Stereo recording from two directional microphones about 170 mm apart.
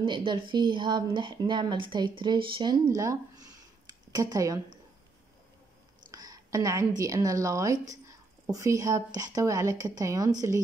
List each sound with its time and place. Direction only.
0.0 s a woman's voice: 30° right (ahead or behind)
6.1 s a sound: 20° right (ahead or behind)
7.0 s a woman's voice: 20° right (ahead or behind)